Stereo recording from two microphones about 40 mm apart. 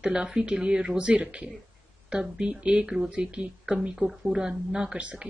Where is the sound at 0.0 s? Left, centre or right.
Centre.